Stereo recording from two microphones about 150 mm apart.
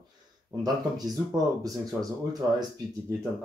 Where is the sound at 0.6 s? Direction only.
25° right (ahead or behind).